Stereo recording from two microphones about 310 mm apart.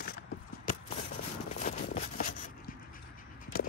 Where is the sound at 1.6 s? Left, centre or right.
Left.